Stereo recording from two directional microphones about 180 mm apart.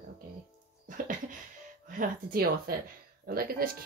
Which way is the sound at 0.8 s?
45° right (ahead or behind).